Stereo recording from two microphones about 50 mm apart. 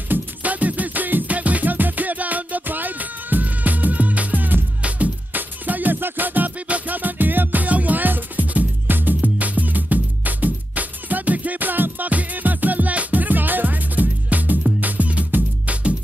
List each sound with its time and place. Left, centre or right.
0.1 s music: right